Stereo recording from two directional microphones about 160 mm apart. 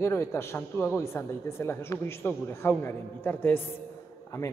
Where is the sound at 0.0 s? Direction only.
15° left (ahead or behind).